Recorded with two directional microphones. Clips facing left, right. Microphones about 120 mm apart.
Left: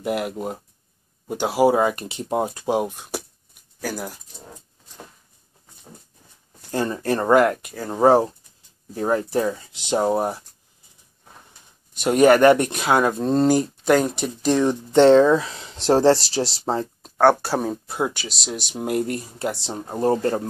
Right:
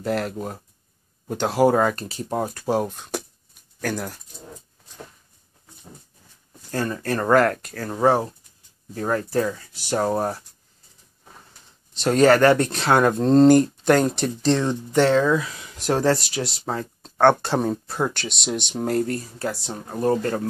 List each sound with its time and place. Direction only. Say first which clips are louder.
0.0 s speech: even; 15° left (ahead or behind)
2.0 s speech: left 2 dB; 20° left (ahead or behind)
6.7 s speech: left 2 dB; 25° left (ahead or behind)
12.0 s speech: left 1 dB; 15° left (ahead or behind)
14.9 s speech: left 5 dB; 25° left (ahead or behind)
17.0 s speech: even; 10° left (ahead or behind); by 20.4 s 25° left (ahead or behind)